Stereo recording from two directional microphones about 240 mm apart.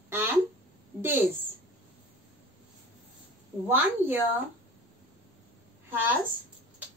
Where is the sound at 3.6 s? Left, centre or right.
Centre.